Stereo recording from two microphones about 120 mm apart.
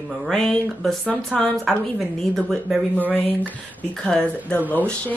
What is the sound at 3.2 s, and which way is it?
Speech, 15° left (ahead or behind).